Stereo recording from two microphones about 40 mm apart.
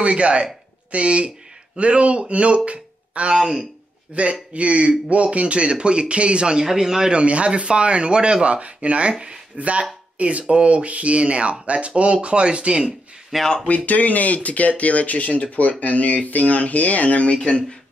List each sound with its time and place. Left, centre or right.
0.0 s speech: right
3.3 s speech: centre
4.1 s speech: right; by 7.1 s centre
7.1 s speech: right
13.3 s speech: centre
13.7 s speech: left
17.4 s speech: left